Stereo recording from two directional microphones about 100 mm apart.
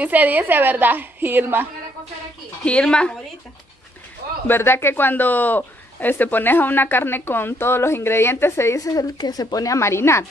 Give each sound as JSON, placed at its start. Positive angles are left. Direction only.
{"t": 0.0, "sound": "a woman's voice", "side_deg": -15}
{"t": 2.6, "sound": "speech", "side_deg": 10}
{"t": 4.5, "sound": "speech", "side_deg": 25}